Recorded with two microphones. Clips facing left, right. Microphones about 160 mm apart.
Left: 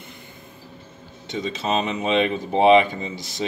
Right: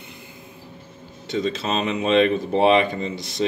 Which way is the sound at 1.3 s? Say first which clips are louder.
Right 1 dB; 60° right (ahead or behind).